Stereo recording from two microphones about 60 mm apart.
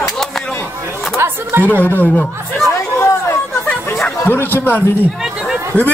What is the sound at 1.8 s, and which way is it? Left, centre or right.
Speech, left.